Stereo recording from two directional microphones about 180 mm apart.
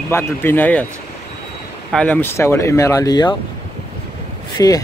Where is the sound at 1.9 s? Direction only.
5° left (ahead or behind).